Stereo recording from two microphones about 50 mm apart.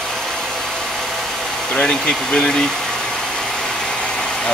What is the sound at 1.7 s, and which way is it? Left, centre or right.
Speech, centre.